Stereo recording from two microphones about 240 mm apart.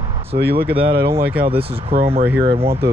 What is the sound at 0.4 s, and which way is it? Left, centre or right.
Speech, right.